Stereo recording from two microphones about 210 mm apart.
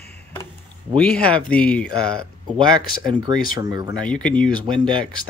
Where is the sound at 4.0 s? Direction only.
5° left (ahead or behind).